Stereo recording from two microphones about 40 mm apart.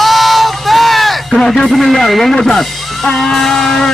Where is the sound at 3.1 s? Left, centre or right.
Centre.